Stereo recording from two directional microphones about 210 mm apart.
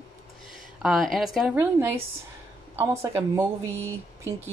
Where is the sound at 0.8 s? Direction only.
Centre (ahead or behind).